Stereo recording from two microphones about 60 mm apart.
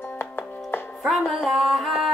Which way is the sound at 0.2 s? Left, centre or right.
Left.